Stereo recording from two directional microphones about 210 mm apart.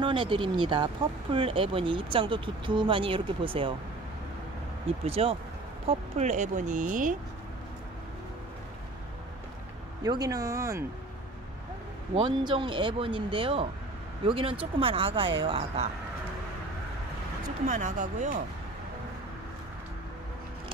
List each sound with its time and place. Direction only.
0.0 s speech: 20° right (ahead or behind)
4.8 s speech: 25° right (ahead or behind)
10.0 s speech: 15° right (ahead or behind)
12.2 s speech: 25° right (ahead or behind)
17.6 s speech: 35° right (ahead or behind)